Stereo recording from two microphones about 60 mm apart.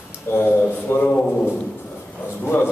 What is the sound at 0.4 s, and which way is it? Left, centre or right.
Speech, left.